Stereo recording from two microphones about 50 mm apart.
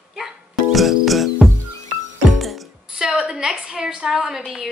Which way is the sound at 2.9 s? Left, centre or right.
Centre.